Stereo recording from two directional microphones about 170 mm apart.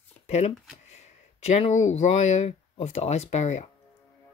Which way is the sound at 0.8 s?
40° left (ahead or behind).